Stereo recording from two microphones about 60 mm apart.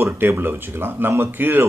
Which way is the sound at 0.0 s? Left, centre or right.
Right.